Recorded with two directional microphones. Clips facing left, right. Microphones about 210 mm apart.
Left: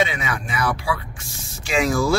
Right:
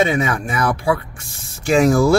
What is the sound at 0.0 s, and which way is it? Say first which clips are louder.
Speech: right 6 dB; 50° right (ahead or behind).